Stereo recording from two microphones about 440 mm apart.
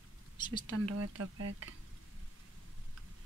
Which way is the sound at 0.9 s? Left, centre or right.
Right.